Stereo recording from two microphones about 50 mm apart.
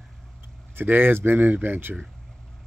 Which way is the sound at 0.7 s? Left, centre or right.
Right.